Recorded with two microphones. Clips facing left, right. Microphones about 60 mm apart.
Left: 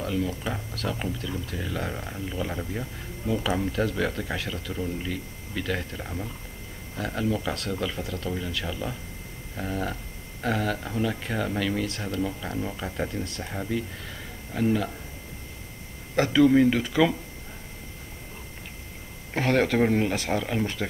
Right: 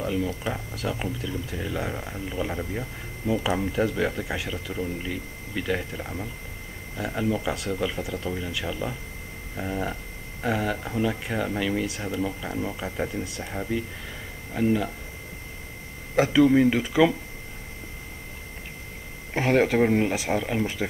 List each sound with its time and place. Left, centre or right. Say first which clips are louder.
0.0 s speech: right 1 dB; centre
16.2 s speech: right 1 dB; centre
19.3 s speech: right 2 dB; centre